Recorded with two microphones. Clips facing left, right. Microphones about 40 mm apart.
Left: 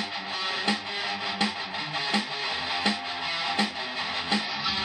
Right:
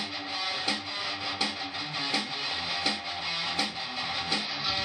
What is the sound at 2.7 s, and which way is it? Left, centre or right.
Music, left.